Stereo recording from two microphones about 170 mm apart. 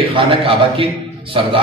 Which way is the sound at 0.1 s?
35° right (ahead or behind).